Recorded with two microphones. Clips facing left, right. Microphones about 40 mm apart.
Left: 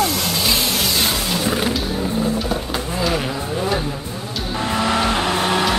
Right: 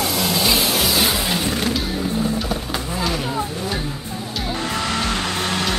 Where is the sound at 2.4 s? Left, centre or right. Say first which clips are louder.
Left 2 dB; centre.